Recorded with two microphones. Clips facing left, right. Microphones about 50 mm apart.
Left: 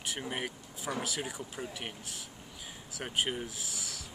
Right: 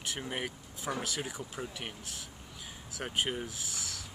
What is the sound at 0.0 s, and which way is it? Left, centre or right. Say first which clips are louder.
Speech: even; centre.